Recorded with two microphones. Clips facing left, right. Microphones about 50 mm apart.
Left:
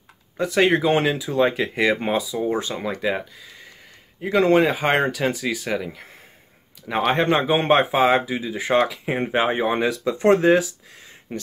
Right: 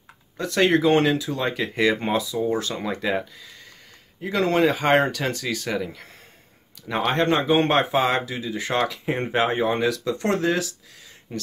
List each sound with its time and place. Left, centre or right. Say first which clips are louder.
0.4 s speech: left 1 dB; centre
2.4 s speech: left 1 dB; left
3.0 s speech: left 1 dB; centre
7.1 s speech: left 1 dB; centre